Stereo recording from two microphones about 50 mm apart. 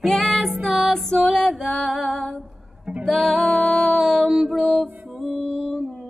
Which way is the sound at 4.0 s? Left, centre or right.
Centre.